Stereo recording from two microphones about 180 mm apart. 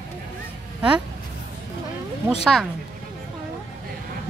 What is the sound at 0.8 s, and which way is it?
Speech, 5° right (ahead or behind).